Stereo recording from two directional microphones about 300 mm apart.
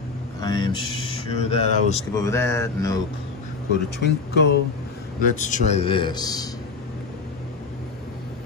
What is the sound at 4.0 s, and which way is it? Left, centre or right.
Speech, left.